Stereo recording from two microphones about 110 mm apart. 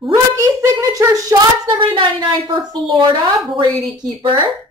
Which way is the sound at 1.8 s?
50° right (ahead or behind).